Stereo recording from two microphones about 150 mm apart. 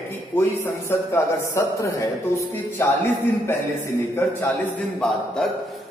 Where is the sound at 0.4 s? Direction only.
15° left (ahead or behind).